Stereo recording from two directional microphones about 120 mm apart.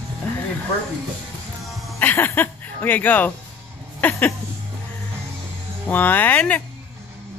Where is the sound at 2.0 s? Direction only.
15° left (ahead or behind).